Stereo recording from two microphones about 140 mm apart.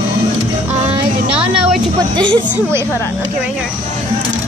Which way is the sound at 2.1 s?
35° right (ahead or behind).